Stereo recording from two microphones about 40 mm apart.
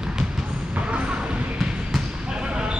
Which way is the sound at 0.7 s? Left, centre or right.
Right.